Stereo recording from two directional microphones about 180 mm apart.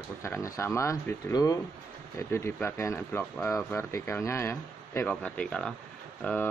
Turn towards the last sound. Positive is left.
turn(degrees=5)  # may be behind; listen again after turning